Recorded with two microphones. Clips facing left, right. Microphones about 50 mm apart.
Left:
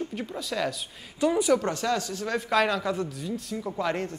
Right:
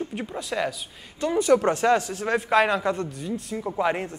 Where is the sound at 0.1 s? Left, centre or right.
Centre.